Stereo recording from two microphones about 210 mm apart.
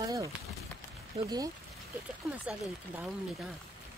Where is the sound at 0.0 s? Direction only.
15° right (ahead or behind).